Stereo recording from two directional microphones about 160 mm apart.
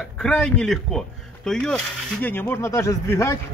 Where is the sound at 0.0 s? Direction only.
5° left (ahead or behind).